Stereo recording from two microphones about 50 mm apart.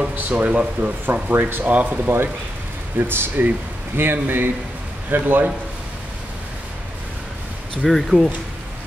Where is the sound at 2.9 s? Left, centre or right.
Right.